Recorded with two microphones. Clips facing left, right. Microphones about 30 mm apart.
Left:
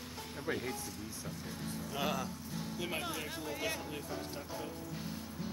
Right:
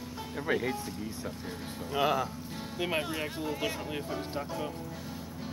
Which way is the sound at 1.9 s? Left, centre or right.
Right.